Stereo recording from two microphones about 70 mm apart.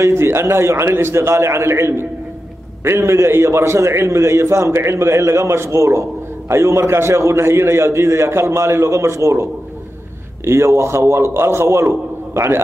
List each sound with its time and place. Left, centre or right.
0.0 s a man's voice: right